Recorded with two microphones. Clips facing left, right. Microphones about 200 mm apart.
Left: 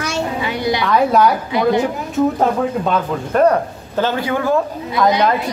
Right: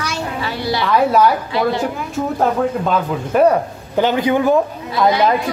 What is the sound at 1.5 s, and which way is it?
Speech, 20° left (ahead or behind).